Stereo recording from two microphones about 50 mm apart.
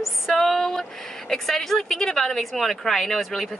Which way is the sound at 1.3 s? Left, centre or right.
Centre.